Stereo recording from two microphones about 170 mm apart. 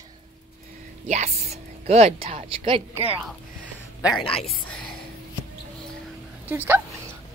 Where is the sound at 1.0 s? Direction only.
40° right (ahead or behind).